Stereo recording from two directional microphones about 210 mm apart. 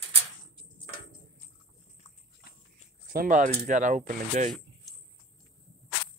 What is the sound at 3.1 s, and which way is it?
Speech, 40° right (ahead or behind).